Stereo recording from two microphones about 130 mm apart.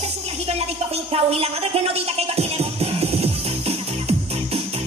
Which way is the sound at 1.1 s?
50° right (ahead or behind).